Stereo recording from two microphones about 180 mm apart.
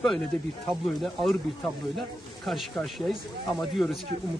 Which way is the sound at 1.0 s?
Centre (ahead or behind).